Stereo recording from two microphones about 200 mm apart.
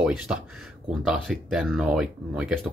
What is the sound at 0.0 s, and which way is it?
Speech, 5° right (ahead or behind).